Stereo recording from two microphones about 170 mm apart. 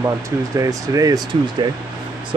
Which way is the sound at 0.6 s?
20° right (ahead or behind).